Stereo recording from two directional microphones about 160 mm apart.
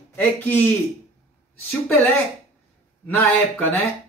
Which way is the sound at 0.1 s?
10° left (ahead or behind).